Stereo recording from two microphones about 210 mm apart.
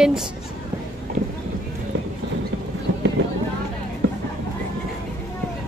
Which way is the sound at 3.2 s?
55° right (ahead or behind).